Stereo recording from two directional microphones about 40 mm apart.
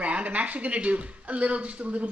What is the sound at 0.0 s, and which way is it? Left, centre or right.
Speech, right.